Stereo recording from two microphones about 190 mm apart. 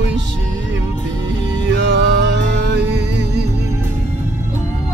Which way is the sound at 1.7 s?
70° right (ahead or behind).